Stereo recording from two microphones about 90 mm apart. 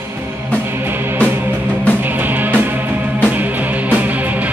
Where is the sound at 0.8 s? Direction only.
25° right (ahead or behind).